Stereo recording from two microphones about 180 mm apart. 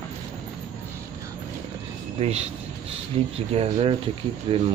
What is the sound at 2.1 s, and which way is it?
Speech, 35° right (ahead or behind).